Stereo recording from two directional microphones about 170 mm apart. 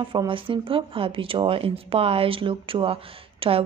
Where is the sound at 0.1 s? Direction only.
30° right (ahead or behind).